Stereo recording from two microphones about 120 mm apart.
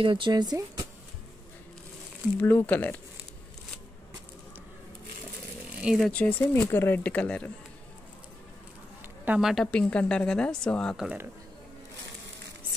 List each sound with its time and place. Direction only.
0.0 s speech: 40° right (ahead or behind)
2.4 s speech: 15° left (ahead or behind)
5.8 s speech: 5° right (ahead or behind)
6.0 s speech: 10° left (ahead or behind)
9.4 s a woman's voice: centre (ahead or behind)
9.7 s speech: 10° left (ahead or behind)